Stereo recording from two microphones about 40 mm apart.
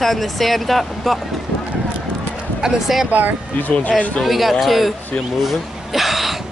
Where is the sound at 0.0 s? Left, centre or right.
Centre.